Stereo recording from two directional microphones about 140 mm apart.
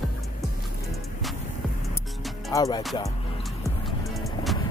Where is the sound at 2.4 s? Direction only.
25° left (ahead or behind).